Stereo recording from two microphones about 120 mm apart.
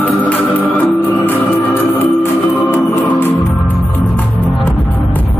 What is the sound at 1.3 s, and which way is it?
Music, 20° left (ahead or behind).